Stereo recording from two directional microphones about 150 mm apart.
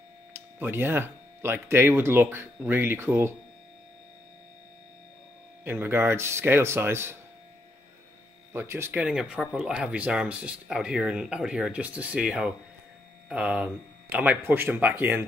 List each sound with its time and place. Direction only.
0.3 s speech: 15° right (ahead or behind)
5.6 s speech: 15° right (ahead or behind)
8.5 s speech: 15° right (ahead or behind)